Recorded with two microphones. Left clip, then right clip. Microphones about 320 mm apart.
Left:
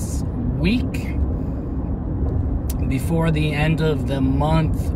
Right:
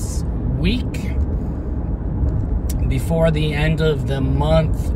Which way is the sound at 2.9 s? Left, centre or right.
Centre.